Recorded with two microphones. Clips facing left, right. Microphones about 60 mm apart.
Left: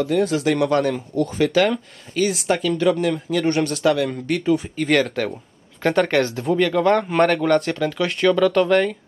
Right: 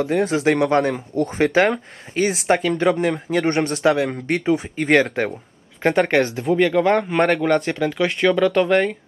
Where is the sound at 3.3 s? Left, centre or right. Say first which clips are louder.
Right 1 dB; right.